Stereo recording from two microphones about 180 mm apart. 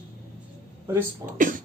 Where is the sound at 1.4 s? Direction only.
45° right (ahead or behind).